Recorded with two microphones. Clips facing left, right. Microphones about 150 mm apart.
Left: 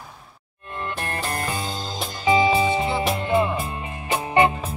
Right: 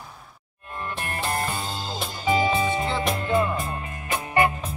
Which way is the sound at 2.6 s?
20° left (ahead or behind).